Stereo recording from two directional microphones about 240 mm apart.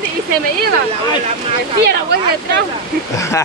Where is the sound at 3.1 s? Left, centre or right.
Centre.